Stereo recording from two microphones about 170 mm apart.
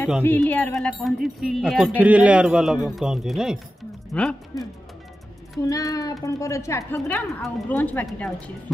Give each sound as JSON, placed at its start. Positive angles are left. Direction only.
{"t": 0.2, "sound": "speech", "side_deg": 10}
{"t": 5.6, "sound": "a child's voice", "side_deg": 20}